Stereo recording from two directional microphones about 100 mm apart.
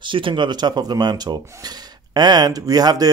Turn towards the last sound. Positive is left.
turn(degrees=-40)  # may be behind; listen again after turning